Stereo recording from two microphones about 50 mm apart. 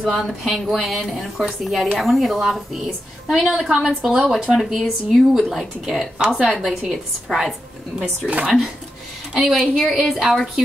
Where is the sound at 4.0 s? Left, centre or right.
Right.